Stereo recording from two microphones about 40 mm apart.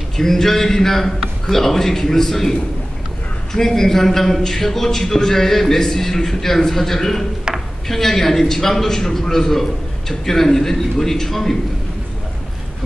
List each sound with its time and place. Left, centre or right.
0.2 s a man's voice: centre
3.5 s a man's voice: centre
7.5 s a sound: right
7.9 s a man's voice: centre